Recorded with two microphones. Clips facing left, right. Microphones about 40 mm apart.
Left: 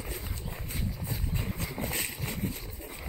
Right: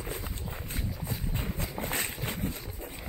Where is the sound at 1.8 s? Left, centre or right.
Right.